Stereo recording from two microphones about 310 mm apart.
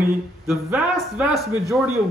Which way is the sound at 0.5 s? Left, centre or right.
Centre.